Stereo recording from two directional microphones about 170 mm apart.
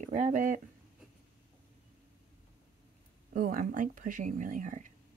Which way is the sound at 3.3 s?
55° right (ahead or behind).